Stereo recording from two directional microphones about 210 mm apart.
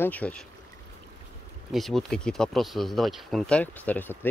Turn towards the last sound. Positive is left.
turn(degrees=10)  # may be behind; listen again after turning